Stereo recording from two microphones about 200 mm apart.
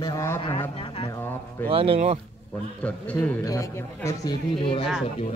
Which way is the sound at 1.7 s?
30° right (ahead or behind).